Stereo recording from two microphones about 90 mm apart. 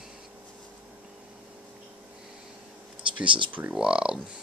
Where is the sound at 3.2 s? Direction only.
65° right (ahead or behind).